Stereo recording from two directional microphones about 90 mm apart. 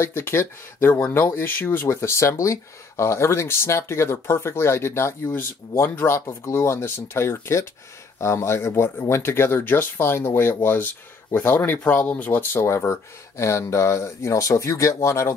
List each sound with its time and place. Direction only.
0.0 s speech: 25° left (ahead or behind)